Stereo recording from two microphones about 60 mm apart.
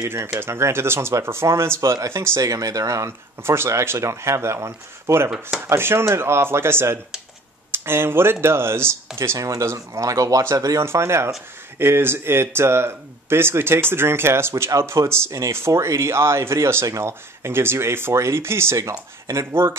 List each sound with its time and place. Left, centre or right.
0.0 s speech: right
2.4 s speech: right
3.4 s speech: right
9.4 s speech: right
10.8 s speech: right
18.8 s speech: right